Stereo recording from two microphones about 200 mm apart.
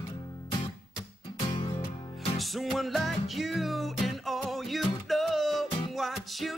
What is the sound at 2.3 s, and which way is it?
Music, centre (ahead or behind).